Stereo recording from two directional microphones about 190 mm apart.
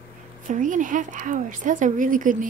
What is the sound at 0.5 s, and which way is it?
A woman's voice, 40° right (ahead or behind).